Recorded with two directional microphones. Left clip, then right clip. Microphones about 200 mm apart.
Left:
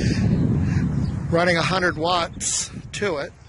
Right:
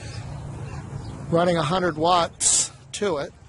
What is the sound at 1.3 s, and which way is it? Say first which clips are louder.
Speech: left 1 dB; 10° right (ahead or behind).